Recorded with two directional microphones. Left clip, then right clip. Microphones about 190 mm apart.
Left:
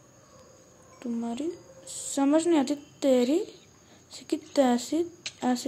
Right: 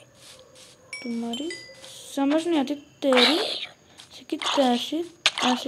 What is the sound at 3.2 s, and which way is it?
Speech, 60° right (ahead or behind).